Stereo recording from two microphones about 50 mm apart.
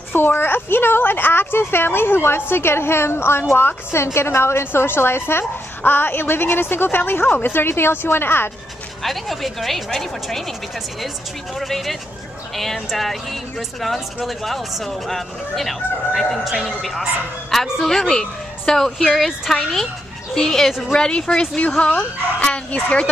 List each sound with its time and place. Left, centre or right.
0.1 s a woman's voice: left
9.0 s speech: centre
11.6 s a woman's voice: centre; by 22.8 s left